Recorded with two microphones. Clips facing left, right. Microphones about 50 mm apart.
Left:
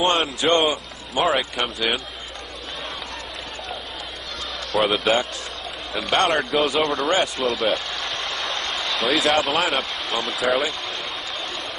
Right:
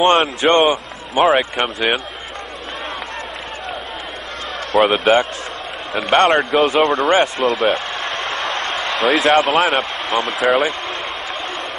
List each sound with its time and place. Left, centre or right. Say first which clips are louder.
0.0 s a man's voice: right 6 dB; right
4.9 s a man's voice: right 6 dB; right